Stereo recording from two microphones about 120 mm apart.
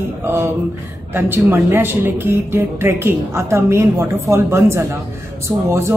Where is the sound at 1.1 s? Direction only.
20° right (ahead or behind).